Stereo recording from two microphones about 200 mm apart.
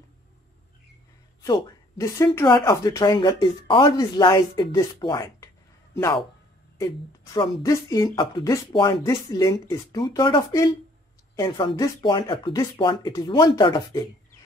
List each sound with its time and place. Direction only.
1.4 s speech: 20° left (ahead or behind)
7.3 s speech: 20° left (ahead or behind)